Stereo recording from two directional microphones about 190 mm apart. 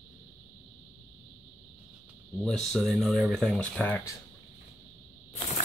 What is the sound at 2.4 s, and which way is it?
Speech, centre (ahead or behind).